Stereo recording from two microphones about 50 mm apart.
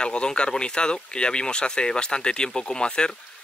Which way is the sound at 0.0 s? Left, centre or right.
Centre.